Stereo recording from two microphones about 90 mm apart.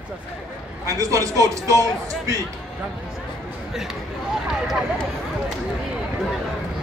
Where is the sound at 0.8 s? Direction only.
35° right (ahead or behind).